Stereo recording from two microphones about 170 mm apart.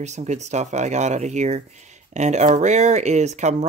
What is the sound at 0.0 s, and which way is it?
Speech, 45° right (ahead or behind).